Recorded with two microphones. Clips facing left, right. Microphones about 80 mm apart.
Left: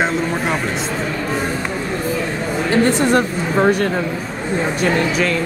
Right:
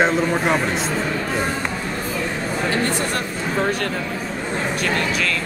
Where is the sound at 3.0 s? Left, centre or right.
Left.